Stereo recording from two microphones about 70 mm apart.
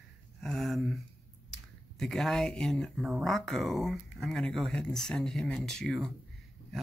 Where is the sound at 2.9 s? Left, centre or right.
Centre.